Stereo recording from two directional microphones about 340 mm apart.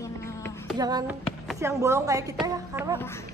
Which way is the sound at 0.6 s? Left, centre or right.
Centre.